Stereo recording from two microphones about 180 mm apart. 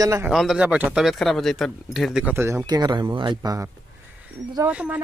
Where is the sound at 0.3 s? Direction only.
Centre (ahead or behind); by 3.7 s 20° right (ahead or behind).